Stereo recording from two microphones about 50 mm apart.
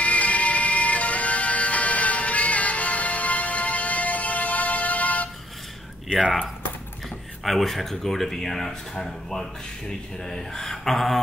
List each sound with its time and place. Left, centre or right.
0.0 s music: left
7.4 s speech: centre